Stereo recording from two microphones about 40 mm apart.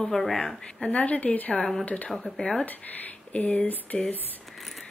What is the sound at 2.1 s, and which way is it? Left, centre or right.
Speech, centre.